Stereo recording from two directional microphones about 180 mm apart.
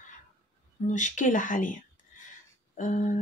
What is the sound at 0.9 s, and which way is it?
Speech, 45° left (ahead or behind).